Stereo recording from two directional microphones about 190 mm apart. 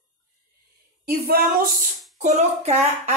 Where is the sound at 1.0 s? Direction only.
50° right (ahead or behind).